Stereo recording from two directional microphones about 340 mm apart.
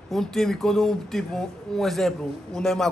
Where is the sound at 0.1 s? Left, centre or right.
Centre.